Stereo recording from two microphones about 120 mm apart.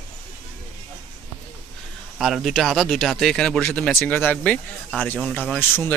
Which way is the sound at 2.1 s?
5° right (ahead or behind).